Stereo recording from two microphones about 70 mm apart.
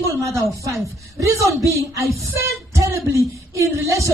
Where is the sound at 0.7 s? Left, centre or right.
Right.